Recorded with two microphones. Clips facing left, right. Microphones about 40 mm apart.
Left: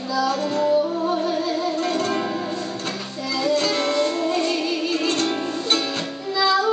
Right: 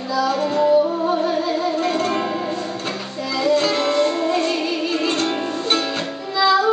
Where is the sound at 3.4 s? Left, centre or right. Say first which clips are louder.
Right 3 dB; centre.